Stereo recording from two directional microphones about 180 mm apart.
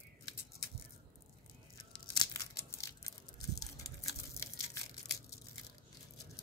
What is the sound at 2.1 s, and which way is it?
Tearing, 20° left (ahead or behind).